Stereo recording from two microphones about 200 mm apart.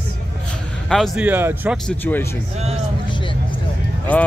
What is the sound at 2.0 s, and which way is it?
Speech, 10° left (ahead or behind).